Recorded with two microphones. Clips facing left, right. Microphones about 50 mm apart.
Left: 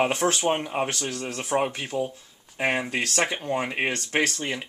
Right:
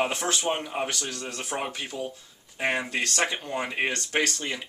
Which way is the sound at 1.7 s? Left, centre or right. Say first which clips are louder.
Left 5 dB; left.